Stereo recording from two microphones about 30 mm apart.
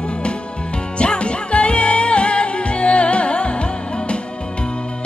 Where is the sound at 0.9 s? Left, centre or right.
Left.